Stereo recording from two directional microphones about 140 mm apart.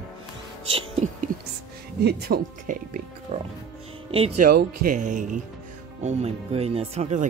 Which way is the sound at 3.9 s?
40° right (ahead or behind).